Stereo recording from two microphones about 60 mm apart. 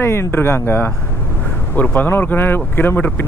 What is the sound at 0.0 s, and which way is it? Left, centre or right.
Speech, left.